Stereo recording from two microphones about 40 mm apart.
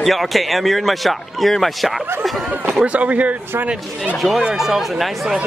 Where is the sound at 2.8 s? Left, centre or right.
Right.